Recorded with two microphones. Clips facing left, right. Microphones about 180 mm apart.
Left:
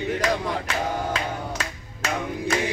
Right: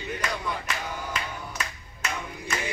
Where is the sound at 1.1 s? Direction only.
90° left.